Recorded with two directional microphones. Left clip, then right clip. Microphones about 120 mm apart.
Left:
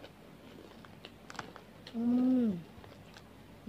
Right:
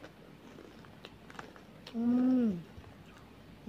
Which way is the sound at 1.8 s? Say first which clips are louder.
Right 1 dB; centre (ahead or behind).